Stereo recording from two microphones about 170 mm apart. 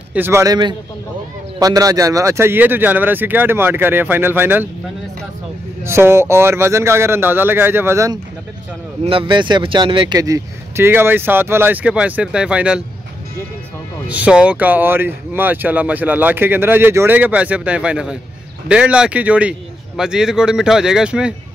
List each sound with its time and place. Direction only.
0.1 s speech: 15° right (ahead or behind)
5.9 s speech: 15° right (ahead or behind)
9.0 s speech: 30° right (ahead or behind); by 12.8 s 5° right (ahead or behind)
14.0 s a man's voice: 10° right (ahead or behind)